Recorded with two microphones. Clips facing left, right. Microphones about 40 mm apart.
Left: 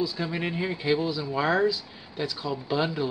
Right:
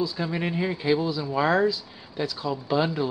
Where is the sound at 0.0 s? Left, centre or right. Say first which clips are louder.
Right 1 dB; centre.